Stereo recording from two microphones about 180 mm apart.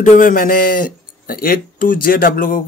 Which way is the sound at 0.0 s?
45° left (ahead or behind).